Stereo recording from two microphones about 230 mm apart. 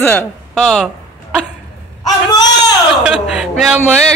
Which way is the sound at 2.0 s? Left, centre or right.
Centre.